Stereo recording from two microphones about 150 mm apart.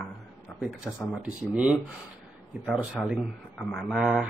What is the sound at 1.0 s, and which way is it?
Speech, 5° right (ahead or behind).